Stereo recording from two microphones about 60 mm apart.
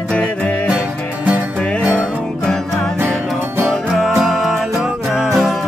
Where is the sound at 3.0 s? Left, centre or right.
Right.